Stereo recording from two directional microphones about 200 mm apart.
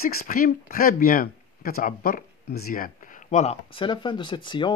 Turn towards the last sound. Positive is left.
turn(degrees=25)  # may be behind; listen again after turning